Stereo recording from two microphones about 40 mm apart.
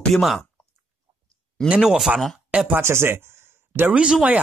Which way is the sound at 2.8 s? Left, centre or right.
Right.